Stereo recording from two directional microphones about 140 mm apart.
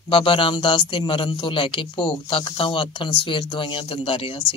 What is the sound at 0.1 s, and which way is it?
A man's voice, 40° left (ahead or behind).